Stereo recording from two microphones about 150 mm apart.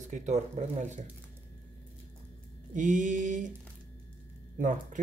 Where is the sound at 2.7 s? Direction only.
60° right (ahead or behind).